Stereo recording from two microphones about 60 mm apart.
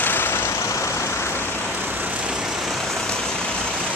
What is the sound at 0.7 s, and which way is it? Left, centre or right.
Vehicle, left.